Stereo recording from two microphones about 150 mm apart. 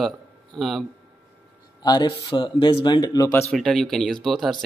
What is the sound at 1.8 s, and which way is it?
Speech, 30° left (ahead or behind).